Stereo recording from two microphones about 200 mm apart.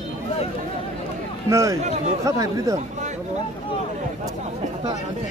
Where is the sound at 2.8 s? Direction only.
35° right (ahead or behind).